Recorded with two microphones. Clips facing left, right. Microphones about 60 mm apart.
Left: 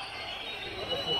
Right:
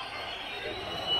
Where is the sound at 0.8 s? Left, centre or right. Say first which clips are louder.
Left 2 dB; right.